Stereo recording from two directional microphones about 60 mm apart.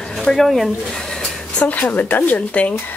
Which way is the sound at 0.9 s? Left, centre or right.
Centre.